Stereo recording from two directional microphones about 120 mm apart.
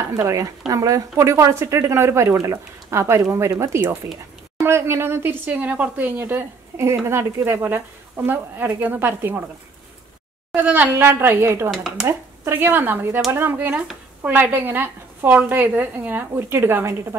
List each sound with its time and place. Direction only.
0.1 s a woman's voice: 25° right (ahead or behind)
10.5 s a woman's voice: 15° right (ahead or behind)
11.7 s speech: 5° right (ahead or behind)
12.4 s speech: 15° right (ahead or behind)